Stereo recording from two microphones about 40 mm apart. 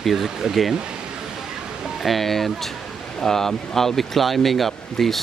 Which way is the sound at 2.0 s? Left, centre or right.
Centre.